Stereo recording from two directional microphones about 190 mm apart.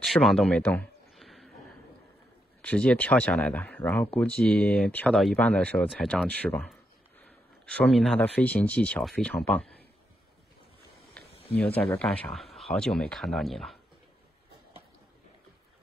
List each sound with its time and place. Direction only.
0.0 s a sound: centre (ahead or behind)
2.6 s speech: 5° left (ahead or behind)
11.4 s speech: 10° left (ahead or behind)